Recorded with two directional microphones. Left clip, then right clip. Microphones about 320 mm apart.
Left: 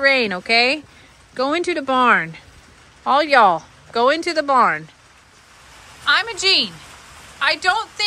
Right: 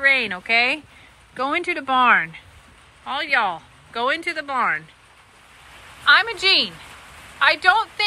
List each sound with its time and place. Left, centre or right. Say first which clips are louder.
0.2 s speech: left 3 dB; centre
6.0 s speech: right 1 dB; centre